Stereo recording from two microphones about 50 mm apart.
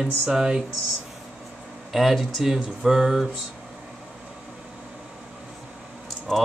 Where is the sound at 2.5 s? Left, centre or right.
Centre.